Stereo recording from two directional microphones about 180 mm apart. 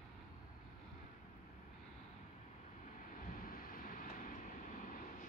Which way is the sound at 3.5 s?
55° left (ahead or behind).